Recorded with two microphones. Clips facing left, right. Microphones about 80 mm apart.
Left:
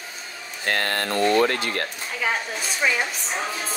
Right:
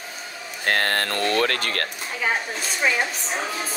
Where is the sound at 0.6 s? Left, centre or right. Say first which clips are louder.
Right 2 dB; right.